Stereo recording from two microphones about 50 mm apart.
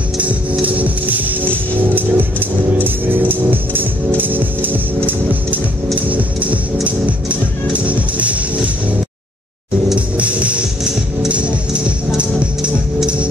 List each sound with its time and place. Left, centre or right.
0.2 s music: right
9.9 s music: right